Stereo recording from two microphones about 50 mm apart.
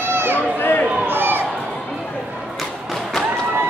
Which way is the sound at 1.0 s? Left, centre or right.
Right.